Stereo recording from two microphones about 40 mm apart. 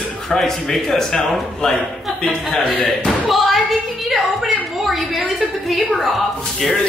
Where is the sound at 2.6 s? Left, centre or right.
Left.